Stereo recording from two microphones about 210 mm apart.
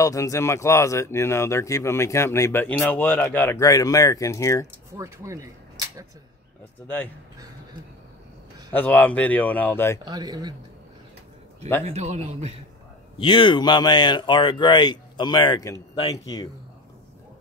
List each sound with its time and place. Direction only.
0.0 s speech: 15° left (ahead or behind)
4.9 s speech: 15° right (ahead or behind)
8.7 s speech: 5° left (ahead or behind)
10.0 s speech: 20° right (ahead or behind)
11.8 s a man's voice: 30° right (ahead or behind)
13.2 s speech: 25° left (ahead or behind)